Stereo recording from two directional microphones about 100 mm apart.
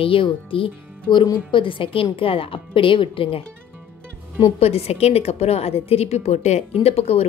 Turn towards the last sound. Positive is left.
turn(degrees=90)